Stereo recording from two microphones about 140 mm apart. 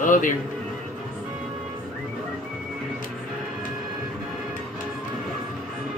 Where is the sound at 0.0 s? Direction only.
70° left (ahead or behind).